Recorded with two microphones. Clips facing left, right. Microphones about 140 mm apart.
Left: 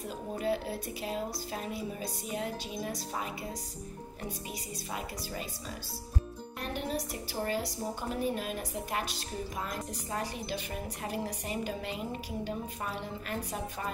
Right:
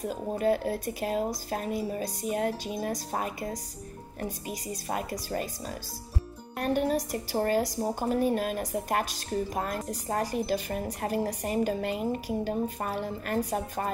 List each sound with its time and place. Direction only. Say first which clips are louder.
0.4 s a woman's voice: right 6 dB; 45° right (ahead or behind)
4.5 s a woman's voice: right 6 dB; 50° right (ahead or behind)